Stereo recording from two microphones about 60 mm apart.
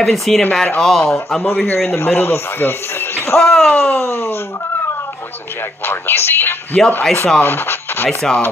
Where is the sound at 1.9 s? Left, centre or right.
Left.